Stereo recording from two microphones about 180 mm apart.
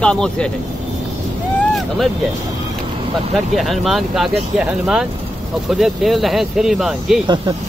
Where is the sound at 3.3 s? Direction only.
Centre (ahead or behind).